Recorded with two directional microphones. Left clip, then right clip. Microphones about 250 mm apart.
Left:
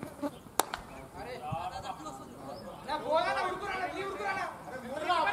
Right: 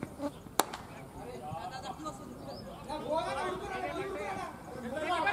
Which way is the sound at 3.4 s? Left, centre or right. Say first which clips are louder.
Left 3 dB; centre.